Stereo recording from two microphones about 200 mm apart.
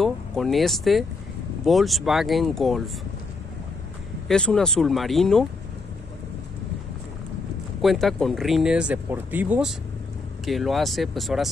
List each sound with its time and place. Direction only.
0.0 s speech: centre (ahead or behind)
4.3 s speech: 5° left (ahead or behind)
7.8 s speech: centre (ahead or behind)